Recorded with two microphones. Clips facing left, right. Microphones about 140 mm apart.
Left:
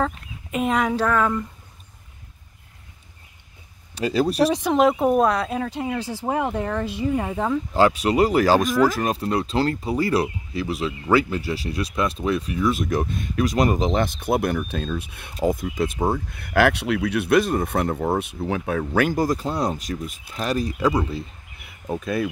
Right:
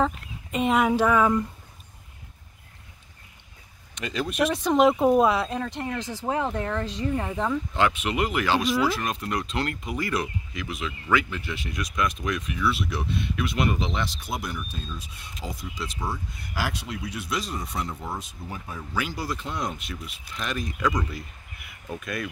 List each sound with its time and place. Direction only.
0.0 s speech: centre (ahead or behind)
3.9 s speech: 35° left (ahead or behind)
4.5 s speech: 10° left (ahead or behind)
4.7 s speech: centre (ahead or behind)
5.5 s speech: 10° left (ahead or behind)
7.7 s speech: 35° left (ahead or behind)